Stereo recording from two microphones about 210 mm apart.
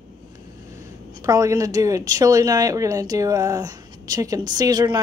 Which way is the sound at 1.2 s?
15° right (ahead or behind).